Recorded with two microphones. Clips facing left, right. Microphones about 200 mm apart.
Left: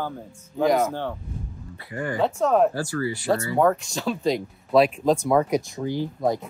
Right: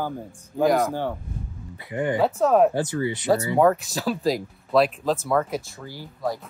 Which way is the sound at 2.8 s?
20° right (ahead or behind).